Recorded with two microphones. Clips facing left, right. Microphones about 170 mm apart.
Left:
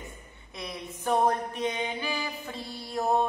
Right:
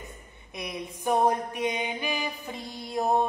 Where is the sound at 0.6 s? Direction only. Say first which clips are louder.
Right 3 dB; 15° right (ahead or behind).